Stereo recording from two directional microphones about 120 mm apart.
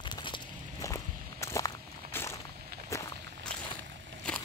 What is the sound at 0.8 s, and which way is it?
Walk, 25° left (ahead or behind).